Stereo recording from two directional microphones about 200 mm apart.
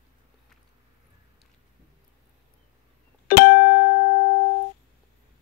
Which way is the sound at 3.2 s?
45° left (ahead or behind).